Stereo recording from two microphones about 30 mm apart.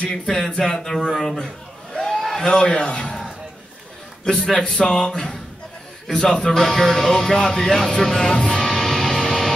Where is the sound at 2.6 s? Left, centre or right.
Left.